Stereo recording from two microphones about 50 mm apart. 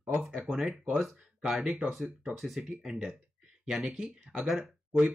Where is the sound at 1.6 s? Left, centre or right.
Right.